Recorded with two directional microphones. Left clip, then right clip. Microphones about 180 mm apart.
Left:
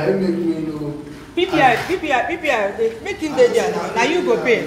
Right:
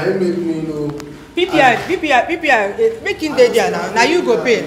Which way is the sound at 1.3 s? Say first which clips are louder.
Right 3 dB; 20° right (ahead or behind).